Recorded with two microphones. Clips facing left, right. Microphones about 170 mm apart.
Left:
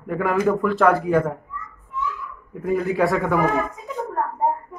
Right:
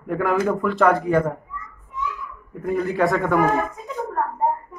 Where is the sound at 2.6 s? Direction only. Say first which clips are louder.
Even; centre (ahead or behind).